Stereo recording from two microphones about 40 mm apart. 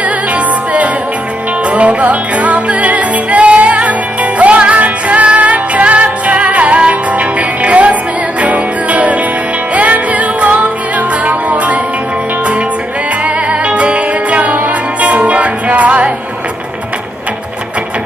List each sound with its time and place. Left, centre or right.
1.7 s music: right
13.5 s music: right